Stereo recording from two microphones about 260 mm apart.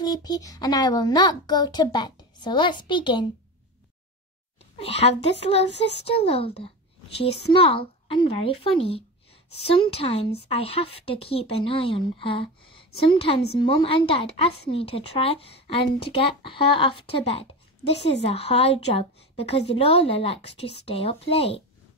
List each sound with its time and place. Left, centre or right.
0.0 s a child's voice: centre
4.7 s speech: left